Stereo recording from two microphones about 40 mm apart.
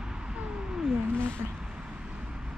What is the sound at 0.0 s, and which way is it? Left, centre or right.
Cat, centre.